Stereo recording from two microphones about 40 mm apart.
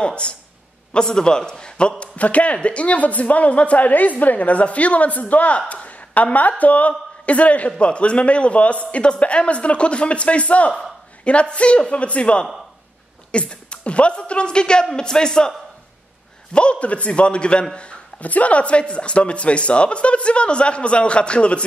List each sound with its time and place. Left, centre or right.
0.0 s speech: left
2.1 s speech: left
5.7 s a sound: left
6.6 s a man's voice: left; by 15.5 s centre
16.5 s speech: left